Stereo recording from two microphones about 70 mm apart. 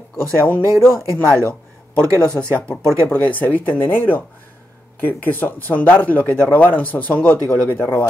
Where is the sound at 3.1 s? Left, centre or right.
Left.